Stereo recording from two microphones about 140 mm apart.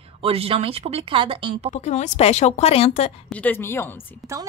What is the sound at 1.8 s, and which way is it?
A woman's voice, 55° left (ahead or behind).